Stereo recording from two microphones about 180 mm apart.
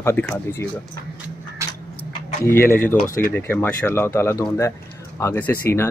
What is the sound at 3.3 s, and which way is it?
Speech, 10° left (ahead or behind).